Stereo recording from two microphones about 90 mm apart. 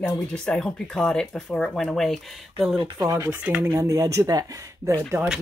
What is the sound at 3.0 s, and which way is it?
Speech, 45° right (ahead or behind).